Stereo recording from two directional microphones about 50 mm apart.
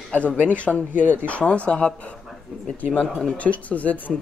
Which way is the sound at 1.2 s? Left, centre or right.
Left.